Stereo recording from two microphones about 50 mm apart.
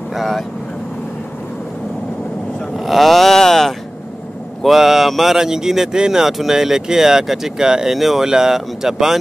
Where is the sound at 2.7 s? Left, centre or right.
Centre.